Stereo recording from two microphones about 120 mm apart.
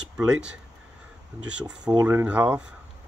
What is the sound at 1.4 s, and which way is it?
Speech, 10° right (ahead or behind).